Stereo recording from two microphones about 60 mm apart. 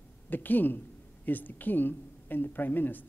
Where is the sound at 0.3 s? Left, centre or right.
Left.